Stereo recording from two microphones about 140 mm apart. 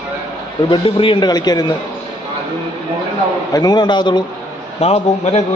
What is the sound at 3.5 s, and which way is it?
Speech, 30° left (ahead or behind).